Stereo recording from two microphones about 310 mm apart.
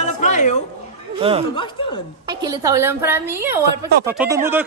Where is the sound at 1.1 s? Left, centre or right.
Centre.